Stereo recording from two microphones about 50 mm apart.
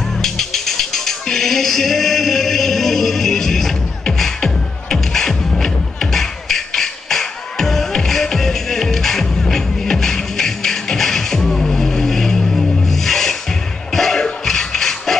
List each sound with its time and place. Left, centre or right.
0.2 s music: centre